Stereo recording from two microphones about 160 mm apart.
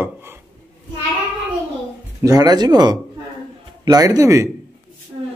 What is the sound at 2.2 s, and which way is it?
Speech, 25° right (ahead or behind).